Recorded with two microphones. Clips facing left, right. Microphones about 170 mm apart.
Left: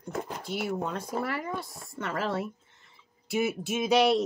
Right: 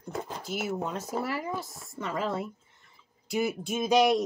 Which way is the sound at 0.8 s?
20° right (ahead or behind).